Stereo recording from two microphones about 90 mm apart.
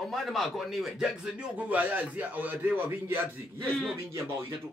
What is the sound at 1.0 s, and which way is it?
Speech, 15° right (ahead or behind).